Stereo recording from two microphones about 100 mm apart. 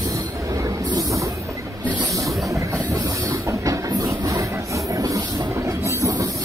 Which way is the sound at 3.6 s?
30° right (ahead or behind).